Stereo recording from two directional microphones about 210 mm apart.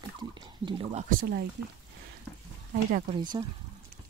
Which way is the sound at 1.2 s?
50° right (ahead or behind).